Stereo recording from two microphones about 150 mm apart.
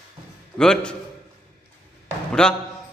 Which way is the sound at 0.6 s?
5° left (ahead or behind).